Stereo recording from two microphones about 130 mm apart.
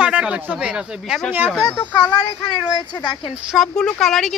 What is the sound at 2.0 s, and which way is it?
Speech, 35° left (ahead or behind).